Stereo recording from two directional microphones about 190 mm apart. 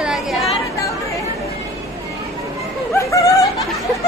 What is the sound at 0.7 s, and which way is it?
Chatter, 15° left (ahead or behind).